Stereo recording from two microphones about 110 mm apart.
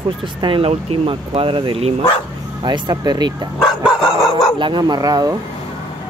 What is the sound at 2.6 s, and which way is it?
Speech, 40° right (ahead or behind).